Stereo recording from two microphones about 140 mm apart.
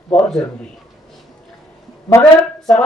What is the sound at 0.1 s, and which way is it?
Speech, 5° left (ahead or behind).